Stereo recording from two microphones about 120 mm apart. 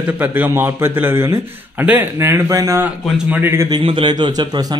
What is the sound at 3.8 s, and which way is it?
Speech, 45° right (ahead or behind).